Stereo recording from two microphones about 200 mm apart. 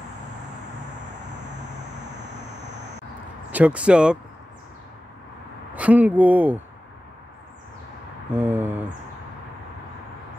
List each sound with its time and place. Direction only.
2.0 s vehicle: 60° right (ahead or behind)
3.5 s speech: 5° right (ahead or behind)
5.8 s speech: 5° right (ahead or behind)
8.3 s speech: 10° right (ahead or behind)